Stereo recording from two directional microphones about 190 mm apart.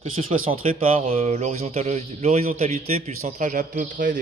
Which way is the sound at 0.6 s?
40° right (ahead or behind).